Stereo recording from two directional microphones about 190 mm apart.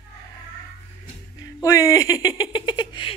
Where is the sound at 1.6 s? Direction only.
15° left (ahead or behind).